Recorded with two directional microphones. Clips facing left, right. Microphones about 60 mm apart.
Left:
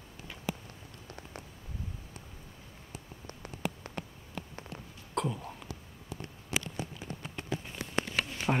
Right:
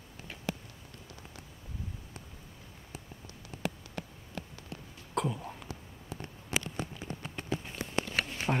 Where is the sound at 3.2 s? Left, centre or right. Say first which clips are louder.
Even; left.